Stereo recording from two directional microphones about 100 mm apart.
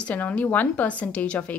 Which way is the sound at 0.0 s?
15° left (ahead or behind).